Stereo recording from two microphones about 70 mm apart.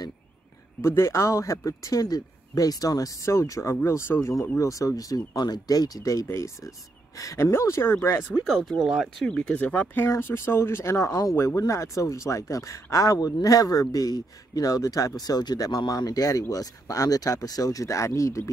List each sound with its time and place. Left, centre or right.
0.8 s speech: left
3.8 s speech: left
6.2 s speech: left
7.2 s speech: left
8.5 s speech: centre
9.2 s speech: centre; by 18.5 s left